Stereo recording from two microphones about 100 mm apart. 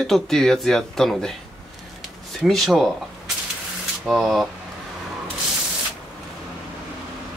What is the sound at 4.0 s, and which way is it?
Speech, centre (ahead or behind).